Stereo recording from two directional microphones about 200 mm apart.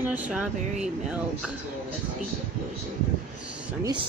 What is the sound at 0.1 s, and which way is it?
Speech, 5° right (ahead or behind).